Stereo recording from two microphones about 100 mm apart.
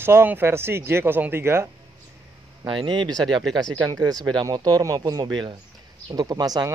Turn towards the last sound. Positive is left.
turn(degrees=-40)  # may be behind; listen again after turning